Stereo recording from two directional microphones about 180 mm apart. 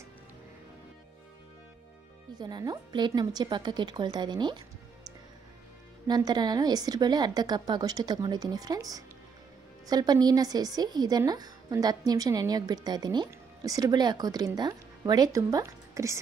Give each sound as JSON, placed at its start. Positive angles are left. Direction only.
{"t": 2.3, "sound": "a woman's voice", "side_deg": -25}
{"t": 6.0, "sound": "a woman's voice", "side_deg": -25}